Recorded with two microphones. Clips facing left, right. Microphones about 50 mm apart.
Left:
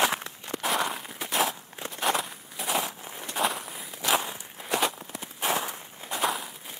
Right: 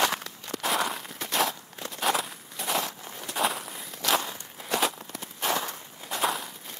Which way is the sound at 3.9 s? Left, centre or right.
Centre.